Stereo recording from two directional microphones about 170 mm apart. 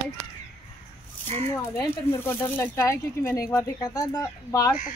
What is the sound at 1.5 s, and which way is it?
Speech, 15° left (ahead or behind).